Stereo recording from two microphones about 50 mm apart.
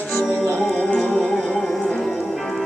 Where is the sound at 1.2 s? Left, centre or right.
Centre.